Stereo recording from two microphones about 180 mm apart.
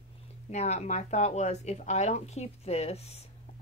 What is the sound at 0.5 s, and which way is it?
A woman's voice, 40° left (ahead or behind).